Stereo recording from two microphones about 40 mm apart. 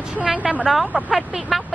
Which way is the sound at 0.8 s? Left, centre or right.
Centre.